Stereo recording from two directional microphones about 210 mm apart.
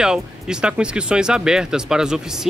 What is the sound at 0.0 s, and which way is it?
Speech, 5° right (ahead or behind).